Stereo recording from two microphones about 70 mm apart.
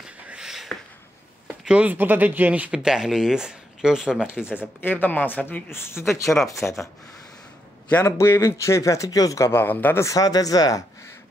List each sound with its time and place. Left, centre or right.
0.3 s a sound: centre
1.6 s speech: centre
2.0 s speech: right
4.6 s speech: left
5.7 s speech: left
6.2 s speech: centre
6.6 s speech: left
8.0 s speech: left
9.5 s speech: left
10.0 s speech: left